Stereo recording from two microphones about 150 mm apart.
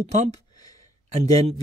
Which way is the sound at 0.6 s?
25° left (ahead or behind).